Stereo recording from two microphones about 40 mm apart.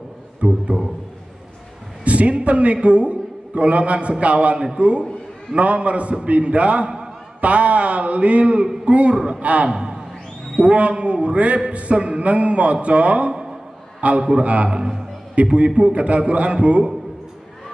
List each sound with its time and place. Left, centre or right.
0.4 s a sound: right
2.0 s a man's voice: right
9.1 s a man's voice: right
9.4 s a man's voice: right
9.7 s a sound: centre
10.6 s a man's voice: right